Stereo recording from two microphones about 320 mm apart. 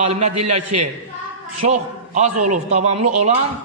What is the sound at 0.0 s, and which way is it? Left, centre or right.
Speech, centre.